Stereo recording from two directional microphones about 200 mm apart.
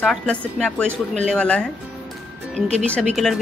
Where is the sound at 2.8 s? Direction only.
5° left (ahead or behind).